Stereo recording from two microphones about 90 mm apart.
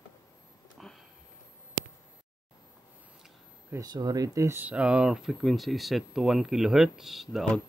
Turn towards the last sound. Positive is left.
turn(degrees=-5)  # may be behind; listen again after turning